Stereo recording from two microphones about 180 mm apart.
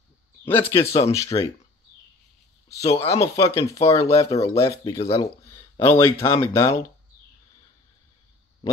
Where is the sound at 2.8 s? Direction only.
35° left (ahead or behind).